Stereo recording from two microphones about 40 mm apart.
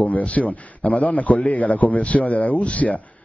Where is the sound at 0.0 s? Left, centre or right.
Left.